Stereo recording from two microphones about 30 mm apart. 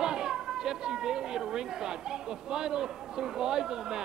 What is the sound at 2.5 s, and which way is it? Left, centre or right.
A man's voice, right.